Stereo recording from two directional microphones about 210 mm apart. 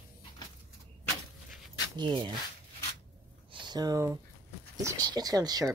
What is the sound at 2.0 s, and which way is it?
Speech, 20° right (ahead or behind).